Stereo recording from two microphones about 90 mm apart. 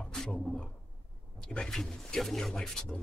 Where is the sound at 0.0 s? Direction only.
5° left (ahead or behind).